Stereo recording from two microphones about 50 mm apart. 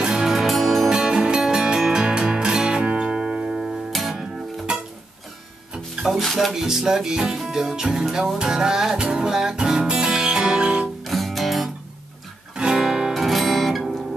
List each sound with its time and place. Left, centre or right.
0.1 s music: centre
0.8 s music: centre
4.7 s music: centre
6.0 s speech: centre
6.5 s music: centre
11.1 s music: centre
12.5 s music: centre
13.1 s music: centre